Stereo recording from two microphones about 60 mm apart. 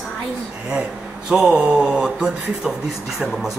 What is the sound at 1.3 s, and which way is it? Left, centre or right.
A man's voice, centre.